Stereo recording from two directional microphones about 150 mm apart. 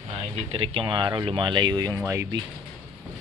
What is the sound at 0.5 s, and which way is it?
Speech, 35° right (ahead or behind).